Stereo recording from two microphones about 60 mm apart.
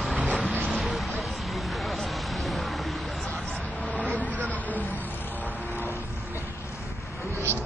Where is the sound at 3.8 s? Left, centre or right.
Left.